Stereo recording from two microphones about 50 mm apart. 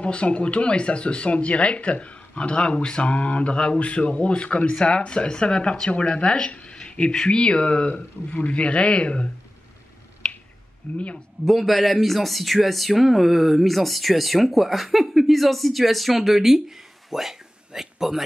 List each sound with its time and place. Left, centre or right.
0.0 s speech: left
10.8 s speech: centre
11.4 s speech: centre